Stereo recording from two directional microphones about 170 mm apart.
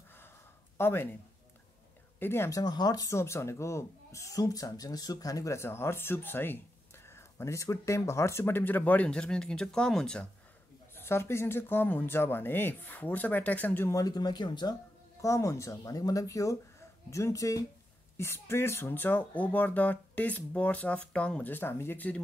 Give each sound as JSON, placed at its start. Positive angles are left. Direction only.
{"t": 0.7, "sound": "speech", "side_deg": 15}
{"t": 2.1, "sound": "speech", "side_deg": 15}
{"t": 11.0, "sound": "speech", "side_deg": 15}